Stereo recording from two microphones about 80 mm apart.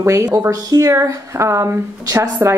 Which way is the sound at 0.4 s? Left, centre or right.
Right.